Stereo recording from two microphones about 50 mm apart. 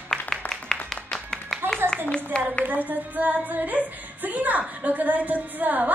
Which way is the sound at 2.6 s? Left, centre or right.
Right.